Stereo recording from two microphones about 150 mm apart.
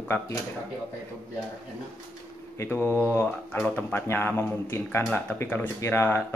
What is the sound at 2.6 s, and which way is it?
Speech, 15° left (ahead or behind).